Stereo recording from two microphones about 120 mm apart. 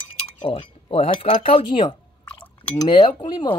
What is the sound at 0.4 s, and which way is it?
Speech, 45° left (ahead or behind).